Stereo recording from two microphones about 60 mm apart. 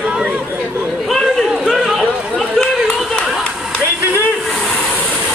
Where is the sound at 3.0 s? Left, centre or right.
Centre.